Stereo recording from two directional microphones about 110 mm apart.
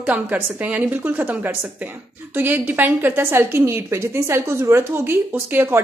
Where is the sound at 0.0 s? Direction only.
15° right (ahead or behind).